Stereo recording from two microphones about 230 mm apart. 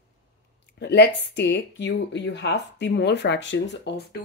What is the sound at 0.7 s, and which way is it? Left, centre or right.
Speech, left.